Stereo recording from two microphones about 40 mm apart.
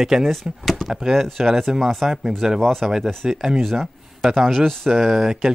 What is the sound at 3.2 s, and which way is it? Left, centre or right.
Speech, centre.